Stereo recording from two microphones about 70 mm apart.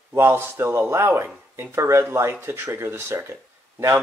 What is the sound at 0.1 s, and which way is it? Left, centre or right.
A man's voice, right.